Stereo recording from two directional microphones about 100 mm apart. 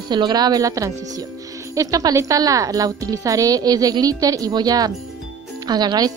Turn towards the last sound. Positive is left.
turn(degrees=-45)  # may be behind; listen again after turning